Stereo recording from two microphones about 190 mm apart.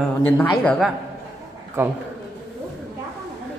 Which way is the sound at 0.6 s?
5° left (ahead or behind).